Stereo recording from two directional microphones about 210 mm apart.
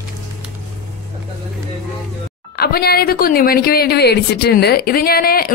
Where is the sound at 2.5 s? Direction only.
50° left (ahead or behind).